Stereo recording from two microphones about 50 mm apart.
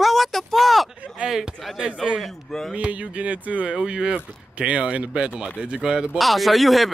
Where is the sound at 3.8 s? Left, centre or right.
Centre.